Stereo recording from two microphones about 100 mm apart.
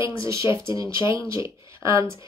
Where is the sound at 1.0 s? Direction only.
30° right (ahead or behind).